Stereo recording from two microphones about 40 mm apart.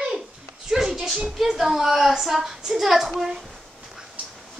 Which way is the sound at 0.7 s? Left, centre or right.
Centre.